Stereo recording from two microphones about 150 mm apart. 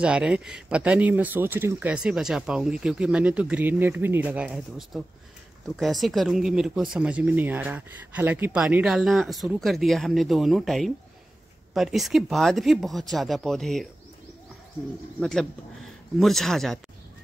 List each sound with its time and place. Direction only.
0.0 s speech: 5° right (ahead or behind)
15.1 s speech: 5° left (ahead or behind)